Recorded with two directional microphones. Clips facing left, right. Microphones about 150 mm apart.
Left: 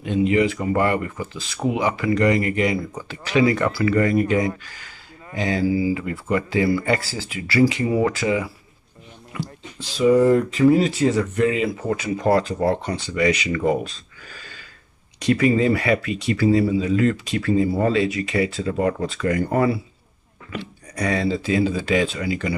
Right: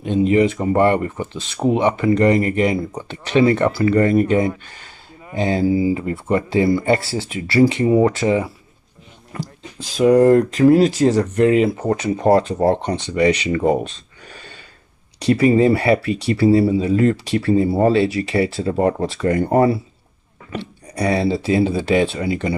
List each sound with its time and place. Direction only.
0.4 s speech: 30° right (ahead or behind)
9.3 s speech: 40° right (ahead or behind)
10.0 s speech: 65° right (ahead or behind)
11.0 s speech: 40° right (ahead or behind)
11.4 s speech: 50° right (ahead or behind)
12.3 s speech: 25° right (ahead or behind)
15.1 s speech: 30° right (ahead or behind)